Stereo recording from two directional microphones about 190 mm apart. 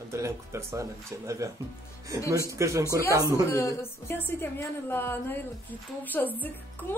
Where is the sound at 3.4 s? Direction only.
15° left (ahead or behind).